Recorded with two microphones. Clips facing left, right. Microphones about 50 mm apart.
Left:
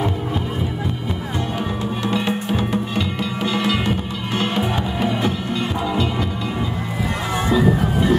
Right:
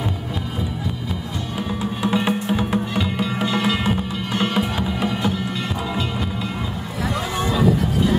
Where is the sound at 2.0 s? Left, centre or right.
Centre.